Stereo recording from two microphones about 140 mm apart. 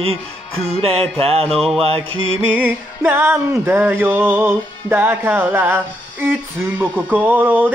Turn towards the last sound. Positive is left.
turn(degrees=-15)  # may be behind; listen again after turning